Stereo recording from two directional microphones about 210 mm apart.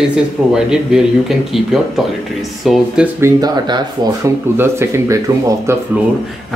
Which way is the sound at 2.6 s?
Centre (ahead or behind).